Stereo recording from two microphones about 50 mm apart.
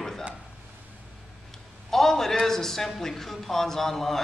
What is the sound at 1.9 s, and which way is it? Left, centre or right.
A man's voice, centre.